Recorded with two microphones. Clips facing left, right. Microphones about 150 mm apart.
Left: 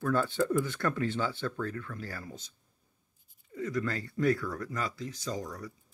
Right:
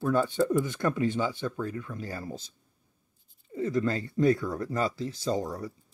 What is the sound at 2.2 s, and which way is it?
Speech, 30° right (ahead or behind).